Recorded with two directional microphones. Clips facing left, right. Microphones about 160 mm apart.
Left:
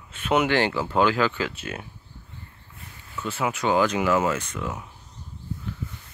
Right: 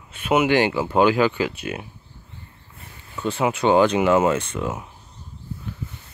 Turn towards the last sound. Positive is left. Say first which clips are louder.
# right 5 dB
turn(degrees=-25)  # may be behind; listen again after turning